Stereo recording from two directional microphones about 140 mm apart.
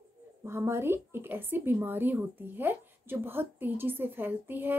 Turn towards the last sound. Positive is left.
turn(degrees=-15)  # may be behind; listen again after turning